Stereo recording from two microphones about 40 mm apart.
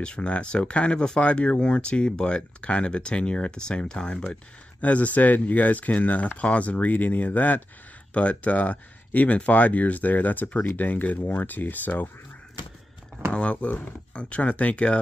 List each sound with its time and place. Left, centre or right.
0.0 s speech: left
4.8 s speech: left
8.1 s speech: left
13.3 s speech: left